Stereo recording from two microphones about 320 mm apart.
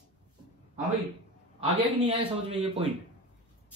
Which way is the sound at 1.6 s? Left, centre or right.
Centre.